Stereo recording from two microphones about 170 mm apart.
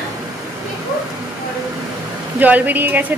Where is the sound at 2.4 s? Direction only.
10° right (ahead or behind).